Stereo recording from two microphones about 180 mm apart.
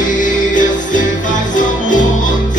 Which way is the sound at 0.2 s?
45° left (ahead or behind).